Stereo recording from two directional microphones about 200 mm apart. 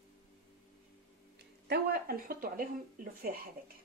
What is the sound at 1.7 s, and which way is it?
Speech, 50° right (ahead or behind).